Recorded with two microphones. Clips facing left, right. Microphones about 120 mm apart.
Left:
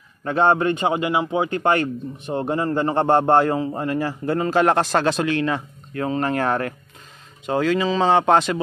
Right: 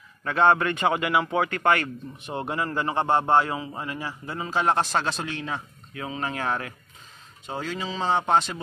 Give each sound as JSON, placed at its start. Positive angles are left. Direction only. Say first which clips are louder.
{"t": 0.2, "sound": "a man's voice", "louder": "left 3 dB", "side_deg": 30}
{"t": 7.4, "sound": "speech", "louder": "left 11 dB", "side_deg": 75}